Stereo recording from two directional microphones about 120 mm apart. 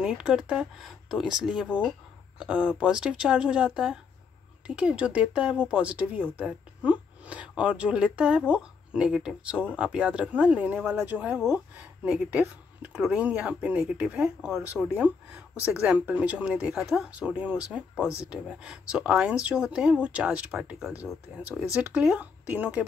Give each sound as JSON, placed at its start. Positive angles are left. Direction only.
{"t": 0.0, "sound": "speech", "side_deg": -5}